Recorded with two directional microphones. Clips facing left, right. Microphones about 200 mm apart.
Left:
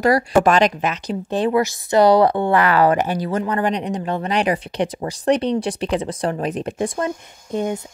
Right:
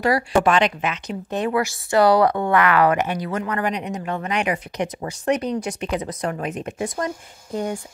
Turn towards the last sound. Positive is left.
turn(degrees=20)  # may be behind; listen again after turning